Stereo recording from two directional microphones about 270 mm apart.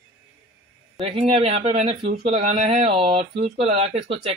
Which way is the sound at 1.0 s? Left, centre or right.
Centre.